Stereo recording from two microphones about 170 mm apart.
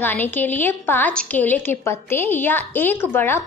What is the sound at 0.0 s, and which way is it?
A woman's voice, 10° left (ahead or behind).